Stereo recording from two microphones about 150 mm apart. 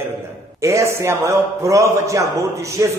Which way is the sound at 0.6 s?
20° right (ahead or behind).